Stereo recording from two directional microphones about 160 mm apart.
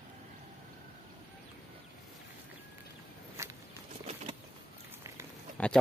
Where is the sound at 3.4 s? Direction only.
20° right (ahead or behind).